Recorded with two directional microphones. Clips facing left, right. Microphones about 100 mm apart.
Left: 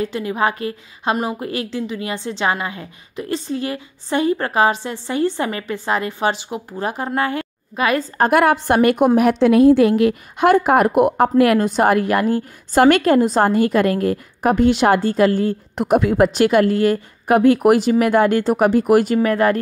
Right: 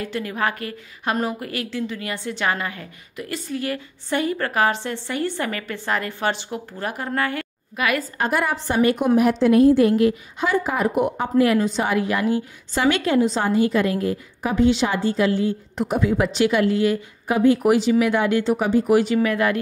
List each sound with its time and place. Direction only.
0.0 s a woman's voice: 20° left (ahead or behind)
8.2 s a woman's voice: 60° left (ahead or behind)
19.1 s speech: 40° left (ahead or behind)